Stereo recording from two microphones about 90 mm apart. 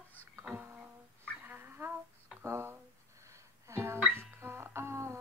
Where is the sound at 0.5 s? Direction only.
25° right (ahead or behind).